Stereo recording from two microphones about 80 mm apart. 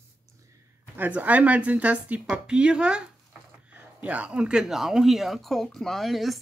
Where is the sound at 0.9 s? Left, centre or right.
Right.